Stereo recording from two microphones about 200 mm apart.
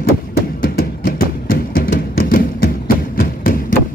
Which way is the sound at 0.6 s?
45° left (ahead or behind).